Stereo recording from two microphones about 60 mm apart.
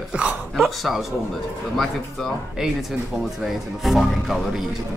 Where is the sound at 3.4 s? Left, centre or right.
Centre.